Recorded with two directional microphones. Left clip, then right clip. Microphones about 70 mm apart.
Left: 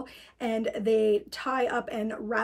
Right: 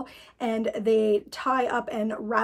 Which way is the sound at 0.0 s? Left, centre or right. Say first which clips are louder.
Right 3 dB; right.